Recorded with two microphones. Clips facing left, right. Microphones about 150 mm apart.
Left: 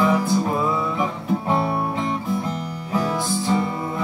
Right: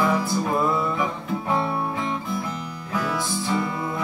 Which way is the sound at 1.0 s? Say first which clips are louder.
Left 3 dB; 30° left (ahead or behind).